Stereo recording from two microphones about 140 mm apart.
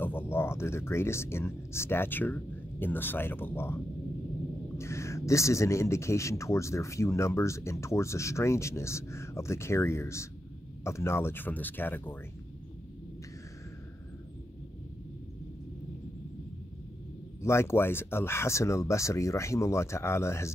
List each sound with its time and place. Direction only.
0.0 s speech: 15° left (ahead or behind)
17.4 s speech: 20° left (ahead or behind)